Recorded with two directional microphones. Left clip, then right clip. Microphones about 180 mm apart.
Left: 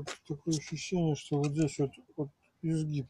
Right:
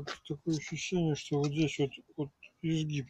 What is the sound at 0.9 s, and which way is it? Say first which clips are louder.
Speech: even; 15° left (ahead or behind).